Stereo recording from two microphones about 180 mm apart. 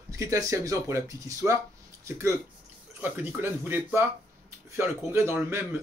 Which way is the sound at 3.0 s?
10° right (ahead or behind).